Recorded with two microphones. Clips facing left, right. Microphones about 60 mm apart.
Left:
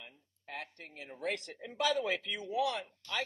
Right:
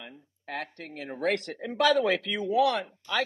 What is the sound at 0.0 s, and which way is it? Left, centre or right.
Speech, right.